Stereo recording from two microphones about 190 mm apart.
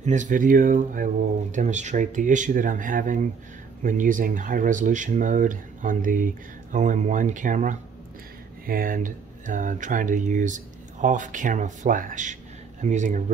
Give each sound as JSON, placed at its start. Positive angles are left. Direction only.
{"t": 0.0, "sound": "speech", "side_deg": -40}